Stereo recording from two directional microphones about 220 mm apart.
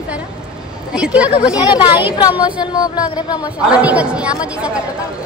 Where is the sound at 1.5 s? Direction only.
20° left (ahead or behind).